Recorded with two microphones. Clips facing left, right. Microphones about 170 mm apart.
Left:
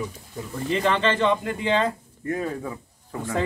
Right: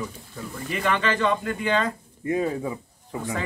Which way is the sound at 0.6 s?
30° left (ahead or behind).